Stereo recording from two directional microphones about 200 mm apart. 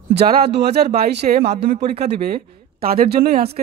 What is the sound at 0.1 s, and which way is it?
Speech, 50° right (ahead or behind).